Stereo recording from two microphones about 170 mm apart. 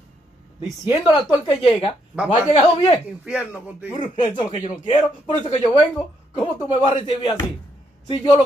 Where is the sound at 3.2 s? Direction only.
5° right (ahead or behind).